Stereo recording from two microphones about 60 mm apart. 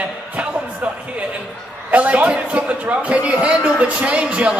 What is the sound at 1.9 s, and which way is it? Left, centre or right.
A woman's voice, right.